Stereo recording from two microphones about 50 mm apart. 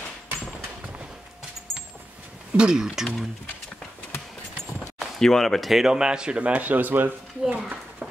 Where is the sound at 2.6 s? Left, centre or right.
Centre.